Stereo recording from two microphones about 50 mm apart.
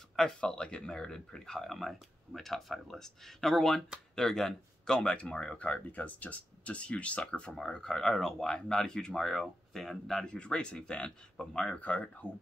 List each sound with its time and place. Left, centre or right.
0.4 s speech: centre
4.9 s speech: left
5.6 s speech: left; by 10.2 s centre
10.2 s speech: left
11.8 s speech: left